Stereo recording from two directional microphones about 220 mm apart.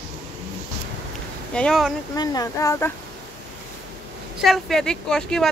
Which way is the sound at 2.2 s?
15° left (ahead or behind).